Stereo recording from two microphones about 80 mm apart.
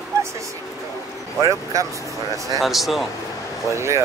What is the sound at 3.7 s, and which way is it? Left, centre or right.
Speech, right.